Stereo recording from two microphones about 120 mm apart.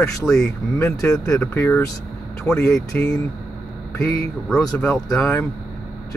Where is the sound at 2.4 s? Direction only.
5° left (ahead or behind).